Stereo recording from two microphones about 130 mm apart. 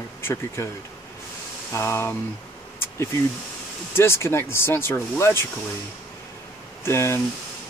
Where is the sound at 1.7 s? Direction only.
20° left (ahead or behind).